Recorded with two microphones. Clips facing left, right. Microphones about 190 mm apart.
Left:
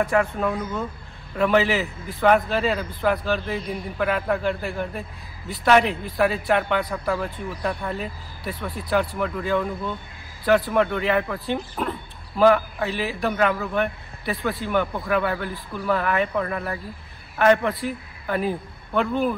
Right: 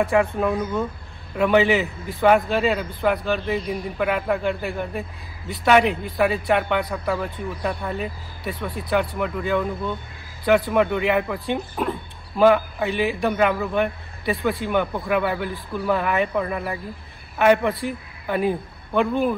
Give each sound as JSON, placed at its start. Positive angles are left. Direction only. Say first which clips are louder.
{"t": 0.2, "sound": "a man's voice", "louder": "right 3 dB", "side_deg": -5}
{"t": 8.6, "sound": "speech", "louder": "right 2 dB", "side_deg": -25}
{"t": 9.2, "sound": "a man's voice", "louder": "right 1 dB", "side_deg": 0}